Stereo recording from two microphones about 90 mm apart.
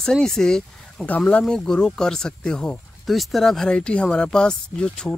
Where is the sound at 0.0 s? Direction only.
5° left (ahead or behind).